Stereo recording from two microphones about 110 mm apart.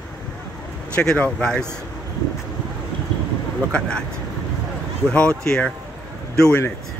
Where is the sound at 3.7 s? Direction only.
10° left (ahead or behind).